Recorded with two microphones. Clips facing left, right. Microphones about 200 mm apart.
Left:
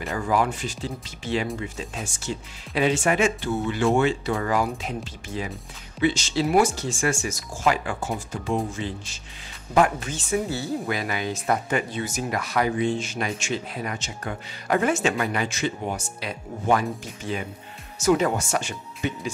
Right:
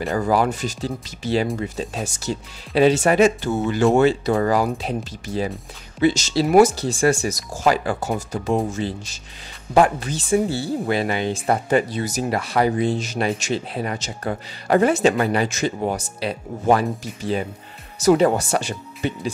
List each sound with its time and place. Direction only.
0.0 s speech: 35° right (ahead or behind)